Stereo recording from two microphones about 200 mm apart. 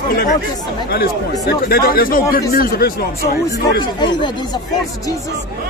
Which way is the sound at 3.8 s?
20° left (ahead or behind).